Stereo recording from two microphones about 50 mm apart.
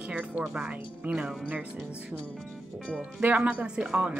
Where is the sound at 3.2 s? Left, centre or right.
Right.